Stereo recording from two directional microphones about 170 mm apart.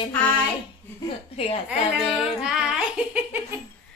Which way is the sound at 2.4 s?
5° right (ahead or behind).